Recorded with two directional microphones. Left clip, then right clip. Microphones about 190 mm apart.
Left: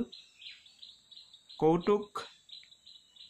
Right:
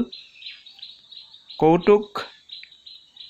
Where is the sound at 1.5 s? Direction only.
20° right (ahead or behind).